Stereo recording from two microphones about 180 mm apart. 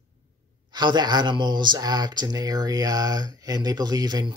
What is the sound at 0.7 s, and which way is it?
Speech, 25° right (ahead or behind).